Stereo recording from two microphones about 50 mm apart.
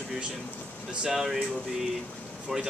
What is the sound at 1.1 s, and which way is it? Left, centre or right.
Speech, centre.